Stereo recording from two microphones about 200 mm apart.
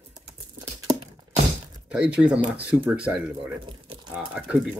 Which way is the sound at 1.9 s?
5° right (ahead or behind).